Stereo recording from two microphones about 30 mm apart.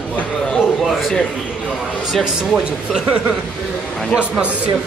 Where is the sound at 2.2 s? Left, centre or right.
Right.